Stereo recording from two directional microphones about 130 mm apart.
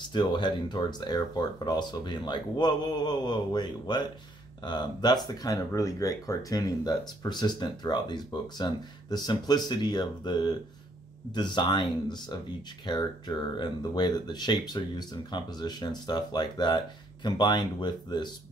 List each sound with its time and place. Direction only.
0.0 s speech: 35° left (ahead or behind)